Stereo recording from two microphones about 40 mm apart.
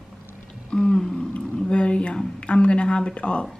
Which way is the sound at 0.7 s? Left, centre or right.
Centre.